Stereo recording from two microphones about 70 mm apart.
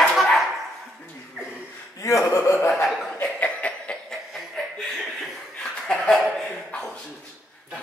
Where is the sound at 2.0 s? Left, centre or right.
Left.